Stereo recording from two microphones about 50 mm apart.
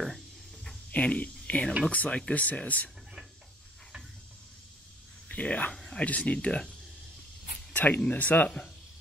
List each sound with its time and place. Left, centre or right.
0.9 s speech: left
5.3 s speech: left
7.7 s speech: left